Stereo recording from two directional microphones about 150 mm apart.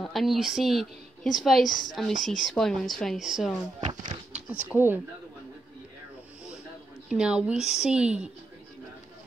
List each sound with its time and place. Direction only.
0.0 s a woman's voice: centre (ahead or behind)
3.8 s speech: 55° right (ahead or behind)
4.3 s speech: 10° right (ahead or behind)
7.1 s a woman's voice: 5° right (ahead or behind)